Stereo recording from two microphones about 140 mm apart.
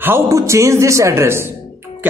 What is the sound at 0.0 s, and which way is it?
A man's voice, 20° right (ahead or behind).